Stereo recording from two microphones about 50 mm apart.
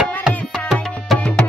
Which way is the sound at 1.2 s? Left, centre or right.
Left.